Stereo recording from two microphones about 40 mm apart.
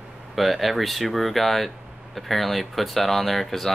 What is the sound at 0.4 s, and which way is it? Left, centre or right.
Speech, centre.